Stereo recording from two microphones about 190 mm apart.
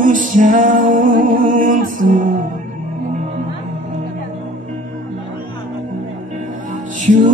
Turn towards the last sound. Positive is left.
turn(degrees=-40)  # may be behind; listen again after turning